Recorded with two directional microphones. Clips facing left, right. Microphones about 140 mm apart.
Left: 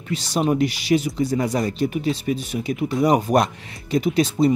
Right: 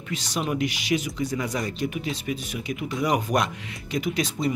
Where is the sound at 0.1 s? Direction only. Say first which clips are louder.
Left 7 dB; 35° left (ahead or behind).